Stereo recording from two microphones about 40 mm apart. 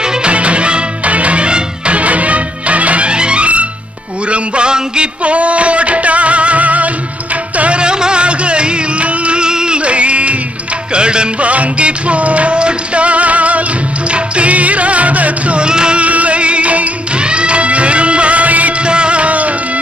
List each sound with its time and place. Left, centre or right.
0.0 s music: right
4.3 s a sound: right
7.5 s music: right
16.0 s music: right
18.9 s music: right